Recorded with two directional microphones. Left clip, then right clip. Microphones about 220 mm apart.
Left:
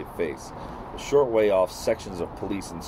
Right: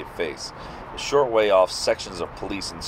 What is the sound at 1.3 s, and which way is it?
Speech, 25° left (ahead or behind).